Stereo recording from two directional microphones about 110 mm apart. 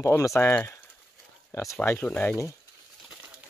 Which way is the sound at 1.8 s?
10° left (ahead or behind).